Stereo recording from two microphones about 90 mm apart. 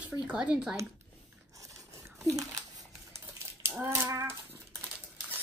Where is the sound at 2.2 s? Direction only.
40° right (ahead or behind).